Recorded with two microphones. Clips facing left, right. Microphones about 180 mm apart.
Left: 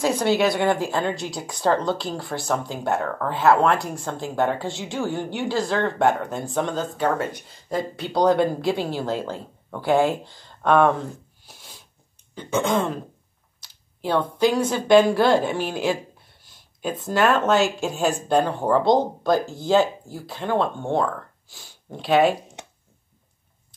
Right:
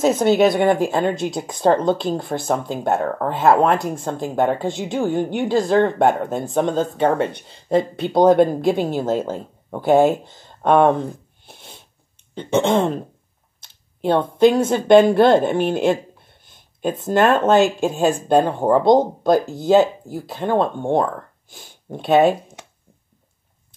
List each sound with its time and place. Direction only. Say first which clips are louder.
0.0 s speech: right 5 dB; 20° right (ahead or behind)
3.3 s speech: right 2 dB; 50° right (ahead or behind)
3.5 s speech: right 3 dB; 20° right (ahead or behind)
13.6 s a sound: right 7 dB; 25° right (ahead or behind)
15.0 s speech: right 5 dB; 20° right (ahead or behind)
16.4 s a sound: right 6 dB; 20° right (ahead or behind)
17.0 s speech: right 4 dB; 20° right (ahead or behind)